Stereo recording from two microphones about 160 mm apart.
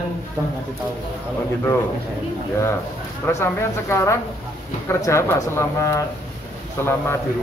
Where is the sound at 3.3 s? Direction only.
15° left (ahead or behind).